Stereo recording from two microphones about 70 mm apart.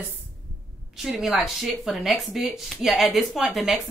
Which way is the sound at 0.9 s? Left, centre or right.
Centre.